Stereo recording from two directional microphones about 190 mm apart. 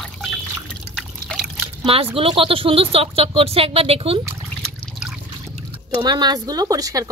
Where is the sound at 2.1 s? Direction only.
30° right (ahead or behind).